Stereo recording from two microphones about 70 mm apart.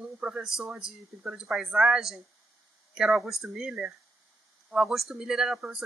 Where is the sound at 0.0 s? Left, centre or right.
Centre.